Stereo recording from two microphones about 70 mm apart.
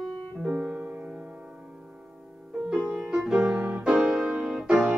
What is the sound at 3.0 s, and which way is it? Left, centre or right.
Music, centre.